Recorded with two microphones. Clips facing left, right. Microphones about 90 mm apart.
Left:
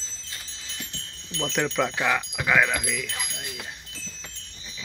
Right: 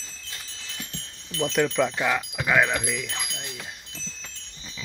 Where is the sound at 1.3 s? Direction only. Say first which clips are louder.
Right 3 dB; 5° right (ahead or behind).